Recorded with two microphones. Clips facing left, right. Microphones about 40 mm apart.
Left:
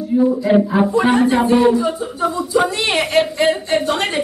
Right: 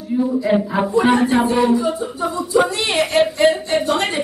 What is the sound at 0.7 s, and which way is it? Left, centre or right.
Speech, centre.